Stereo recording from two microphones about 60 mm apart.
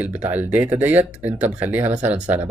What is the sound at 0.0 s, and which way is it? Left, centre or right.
Speech, right.